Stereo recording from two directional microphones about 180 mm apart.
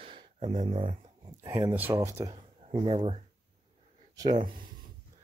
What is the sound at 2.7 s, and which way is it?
Speech, 30° right (ahead or behind).